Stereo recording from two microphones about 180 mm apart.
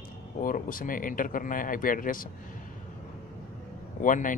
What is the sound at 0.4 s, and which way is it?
A man's voice, 50° left (ahead or behind).